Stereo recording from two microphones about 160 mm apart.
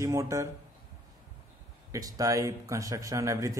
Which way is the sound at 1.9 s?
20° right (ahead or behind).